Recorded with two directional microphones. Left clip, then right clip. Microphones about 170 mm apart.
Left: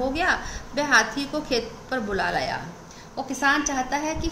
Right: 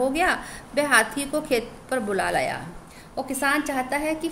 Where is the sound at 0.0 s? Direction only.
70° right (ahead or behind).